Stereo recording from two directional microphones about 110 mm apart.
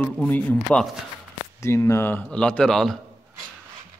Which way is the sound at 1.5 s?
25° left (ahead or behind).